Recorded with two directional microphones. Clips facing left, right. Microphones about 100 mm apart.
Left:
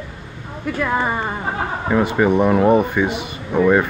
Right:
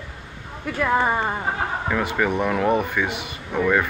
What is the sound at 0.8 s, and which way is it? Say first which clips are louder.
Speech: even; 15° right (ahead or behind).